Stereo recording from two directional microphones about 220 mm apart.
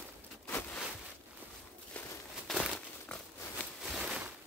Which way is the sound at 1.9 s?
5° left (ahead or behind).